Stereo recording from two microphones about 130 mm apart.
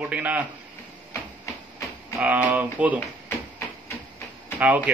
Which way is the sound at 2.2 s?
10° right (ahead or behind).